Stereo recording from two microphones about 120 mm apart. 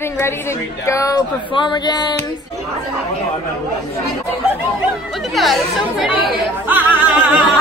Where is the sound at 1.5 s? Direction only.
40° left (ahead or behind).